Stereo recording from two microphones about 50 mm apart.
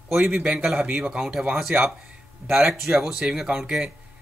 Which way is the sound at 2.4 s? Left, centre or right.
Centre.